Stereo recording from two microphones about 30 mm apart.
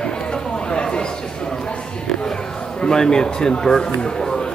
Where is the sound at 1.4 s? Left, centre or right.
Centre.